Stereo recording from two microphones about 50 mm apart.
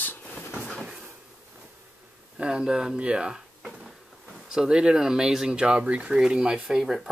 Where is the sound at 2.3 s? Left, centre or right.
Centre.